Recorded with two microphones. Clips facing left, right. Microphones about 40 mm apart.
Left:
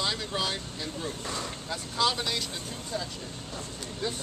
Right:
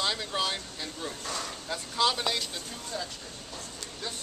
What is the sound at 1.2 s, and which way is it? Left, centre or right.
Vehicle, left.